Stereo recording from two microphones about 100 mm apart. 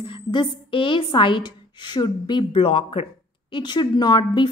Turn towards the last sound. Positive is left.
turn(degrees=45)  # may be behind; listen again after turning